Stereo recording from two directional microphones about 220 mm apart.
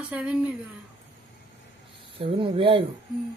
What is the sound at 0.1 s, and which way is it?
Speech, 5° right (ahead or behind).